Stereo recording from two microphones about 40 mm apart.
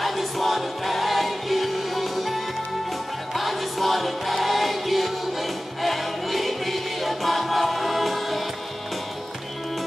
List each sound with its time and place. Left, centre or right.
0.0 s music: centre